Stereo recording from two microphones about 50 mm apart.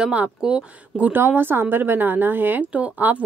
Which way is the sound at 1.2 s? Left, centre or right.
Right.